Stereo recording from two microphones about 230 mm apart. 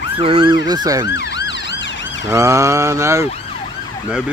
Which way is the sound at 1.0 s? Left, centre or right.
Left.